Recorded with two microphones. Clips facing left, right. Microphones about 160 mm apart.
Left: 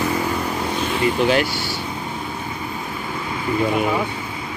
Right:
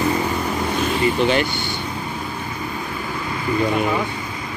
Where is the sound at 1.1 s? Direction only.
5° left (ahead or behind).